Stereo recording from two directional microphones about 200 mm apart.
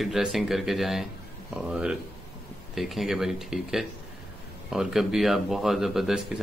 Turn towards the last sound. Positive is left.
turn(degrees=0)  # may be behind; listen again after turning